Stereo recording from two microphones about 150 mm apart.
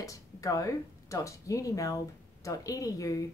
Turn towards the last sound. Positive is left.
turn(degrees=25)  # may be behind; listen again after turning